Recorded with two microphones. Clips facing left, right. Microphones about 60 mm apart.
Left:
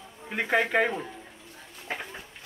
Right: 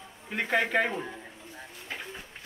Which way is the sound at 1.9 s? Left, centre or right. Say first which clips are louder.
Left 5 dB; left.